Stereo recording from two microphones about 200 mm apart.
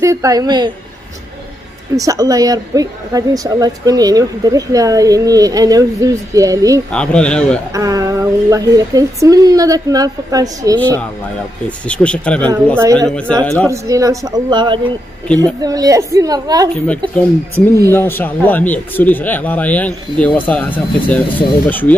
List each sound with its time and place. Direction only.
0.0 s a woman's voice: 15° right (ahead or behind)
2.0 s a woman's voice: 15° right (ahead or behind)
6.9 s speech: 5° left (ahead or behind)
7.7 s a woman's voice: 15° right (ahead or behind)
10.8 s a man's voice: 10° left (ahead or behind)
13.7 s a woman's voice: 15° right (ahead or behind)
17.9 s a man's voice: 10° left (ahead or behind)